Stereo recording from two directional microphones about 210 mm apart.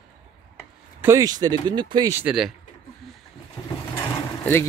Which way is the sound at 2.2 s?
5° right (ahead or behind).